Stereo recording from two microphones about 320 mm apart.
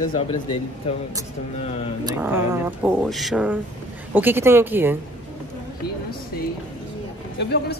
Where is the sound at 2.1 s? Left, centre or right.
Centre.